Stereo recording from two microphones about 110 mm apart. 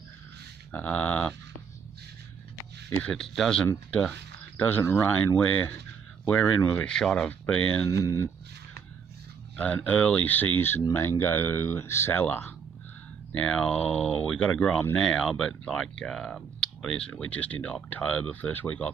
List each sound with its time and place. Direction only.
0.7 s speech: 15° left (ahead or behind)
3.0 s speech: 5° left (ahead or behind); by 6.8 s 20° left (ahead or behind)
6.8 s speech: 5° left (ahead or behind)
9.6 s speech: 15° left (ahead or behind)